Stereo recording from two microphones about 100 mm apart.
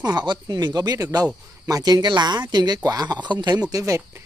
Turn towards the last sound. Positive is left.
turn(degrees=-35)  # may be behind; listen again after turning